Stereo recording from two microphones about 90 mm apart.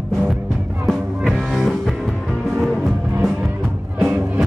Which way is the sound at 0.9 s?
Centre (ahead or behind).